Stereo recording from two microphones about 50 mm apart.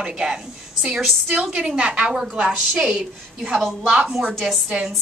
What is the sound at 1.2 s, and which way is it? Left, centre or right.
A woman's voice, right.